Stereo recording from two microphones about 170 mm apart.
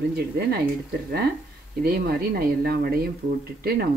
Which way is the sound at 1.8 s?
65° right (ahead or behind).